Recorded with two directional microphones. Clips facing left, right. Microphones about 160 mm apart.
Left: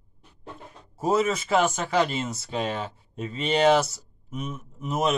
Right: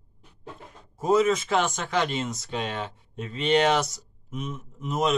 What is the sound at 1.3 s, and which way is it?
A man's voice, 5° left (ahead or behind).